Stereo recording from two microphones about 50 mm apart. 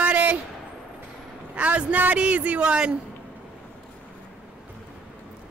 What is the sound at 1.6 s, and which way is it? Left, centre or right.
Speech, right.